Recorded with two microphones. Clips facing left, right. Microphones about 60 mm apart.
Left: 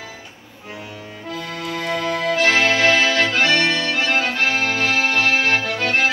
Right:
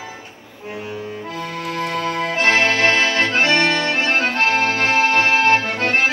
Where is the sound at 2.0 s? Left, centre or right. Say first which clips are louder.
Left 2 dB; right.